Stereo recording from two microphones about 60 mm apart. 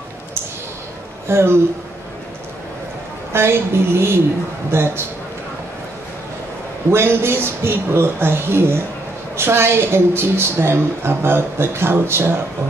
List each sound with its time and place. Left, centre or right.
1.2 s speech: right
3.3 s a woman's voice: right
6.9 s a woman's voice: right